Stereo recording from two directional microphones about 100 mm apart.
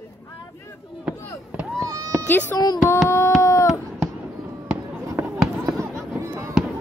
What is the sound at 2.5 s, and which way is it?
Speech, 40° left (ahead or behind).